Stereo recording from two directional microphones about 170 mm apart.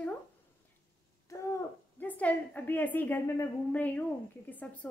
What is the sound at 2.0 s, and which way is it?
A woman's voice, 10° left (ahead or behind).